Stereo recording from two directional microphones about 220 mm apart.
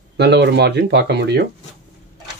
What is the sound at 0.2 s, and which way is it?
Speech, 50° right (ahead or behind).